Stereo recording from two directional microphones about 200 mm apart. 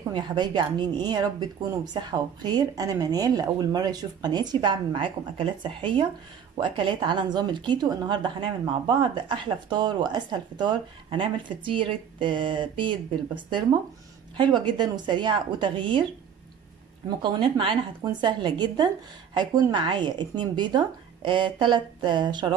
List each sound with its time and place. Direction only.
0.1 s a woman's voice: 20° right (ahead or behind)
14.3 s a woman's voice: 25° right (ahead or behind)
17.2 s a woman's voice: 25° right (ahead or behind)